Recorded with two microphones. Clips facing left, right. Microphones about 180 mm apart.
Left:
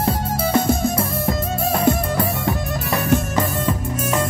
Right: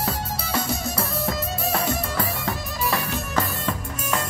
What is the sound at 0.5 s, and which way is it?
Music, 50° left (ahead or behind).